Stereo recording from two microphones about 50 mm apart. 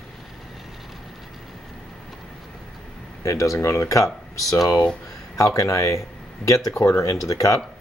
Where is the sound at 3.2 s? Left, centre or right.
Left.